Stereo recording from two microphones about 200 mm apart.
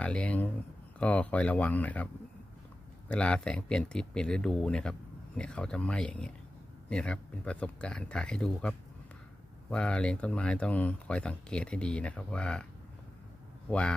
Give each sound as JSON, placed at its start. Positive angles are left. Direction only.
{"t": 0.0, "sound": "speech", "side_deg": 5}
{"t": 3.1, "sound": "speech", "side_deg": 5}
{"t": 13.7, "sound": "a man's voice", "side_deg": 5}